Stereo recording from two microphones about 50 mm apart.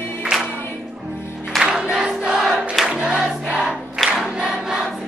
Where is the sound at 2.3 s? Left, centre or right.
Centre.